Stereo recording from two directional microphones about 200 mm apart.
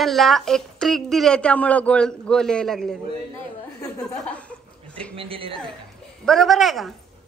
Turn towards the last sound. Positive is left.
turn(degrees=0)  # may be behind; listen again after turning